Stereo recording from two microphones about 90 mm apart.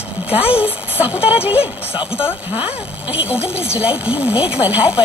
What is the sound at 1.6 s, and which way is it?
Speech, 90° left.